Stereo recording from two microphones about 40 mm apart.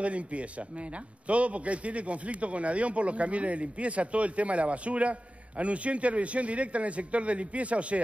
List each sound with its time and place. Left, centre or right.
0.0 s a man's voice: right